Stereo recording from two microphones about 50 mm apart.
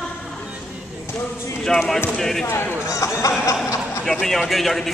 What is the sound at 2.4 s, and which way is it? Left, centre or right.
Speech, left.